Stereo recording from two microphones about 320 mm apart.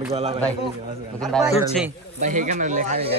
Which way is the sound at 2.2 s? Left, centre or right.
Right.